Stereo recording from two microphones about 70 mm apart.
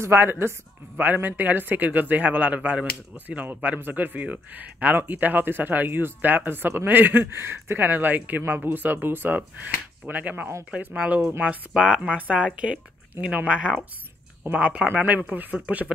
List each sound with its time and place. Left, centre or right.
0.0 s speech: right; by 15.9 s centre